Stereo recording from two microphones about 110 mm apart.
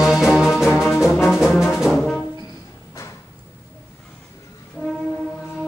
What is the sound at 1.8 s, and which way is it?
Brass instrument, 5° left (ahead or behind).